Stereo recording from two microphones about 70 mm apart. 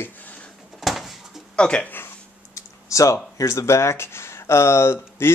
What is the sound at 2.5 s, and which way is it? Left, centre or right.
Speech, left.